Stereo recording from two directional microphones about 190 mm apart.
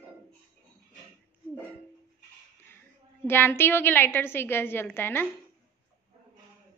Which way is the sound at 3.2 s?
10° left (ahead or behind).